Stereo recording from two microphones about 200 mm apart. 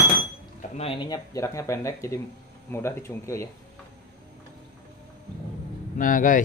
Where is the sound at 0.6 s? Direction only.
30° left (ahead or behind); by 3.4 s 15° left (ahead or behind).